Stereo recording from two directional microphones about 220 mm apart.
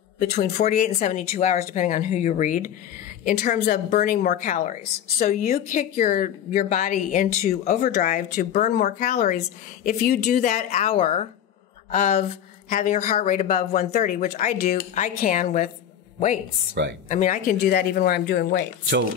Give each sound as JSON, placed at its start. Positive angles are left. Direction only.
{"t": 0.2, "sound": "a woman's voice", "side_deg": 35}
{"t": 16.8, "sound": "speech", "side_deg": -50}
{"t": 17.1, "sound": "speech", "side_deg": 35}